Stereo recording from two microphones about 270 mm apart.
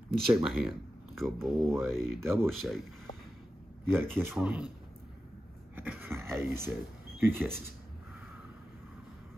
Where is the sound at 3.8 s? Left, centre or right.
Centre.